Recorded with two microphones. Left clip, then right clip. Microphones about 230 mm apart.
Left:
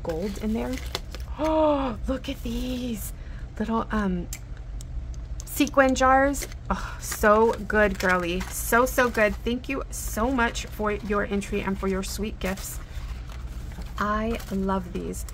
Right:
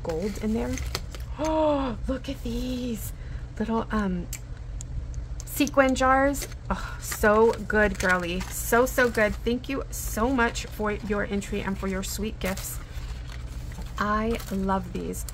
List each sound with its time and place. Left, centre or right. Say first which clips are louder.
0.0 s a woman's voice: even; centre
5.7 s a woman's voice: left 2 dB; centre
13.9 s a woman's voice: even; centre